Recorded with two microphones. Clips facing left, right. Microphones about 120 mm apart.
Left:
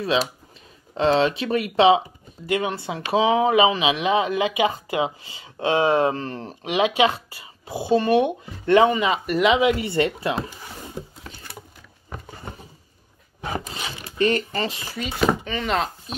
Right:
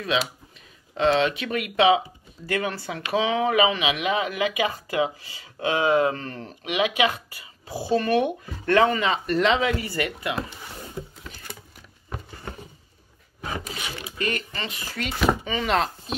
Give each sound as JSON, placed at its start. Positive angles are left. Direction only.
{"t": 0.0, "sound": "speech", "side_deg": 35}
{"t": 2.4, "sound": "speech", "side_deg": 20}
{"t": 14.1, "sound": "speech", "side_deg": 30}
{"t": 15.0, "sound": "speech", "side_deg": 0}